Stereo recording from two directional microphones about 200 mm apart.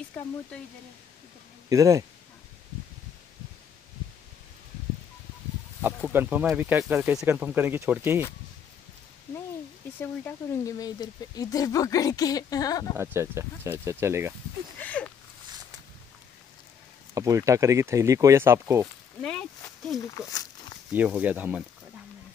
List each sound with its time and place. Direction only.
0.2 s speech: 5° left (ahead or behind)
1.7 s speech: 15° right (ahead or behind)
6.0 s speech: 5° right (ahead or behind)
9.9 s speech: 15° left (ahead or behind)
12.9 s speech: 10° right (ahead or behind)
14.8 s a sound: 5° left (ahead or behind)
17.1 s speech: 15° right (ahead or behind)
19.2 s a sound: centre (ahead or behind)
20.2 s speech: 15° left (ahead or behind)
20.9 s speech: 10° right (ahead or behind)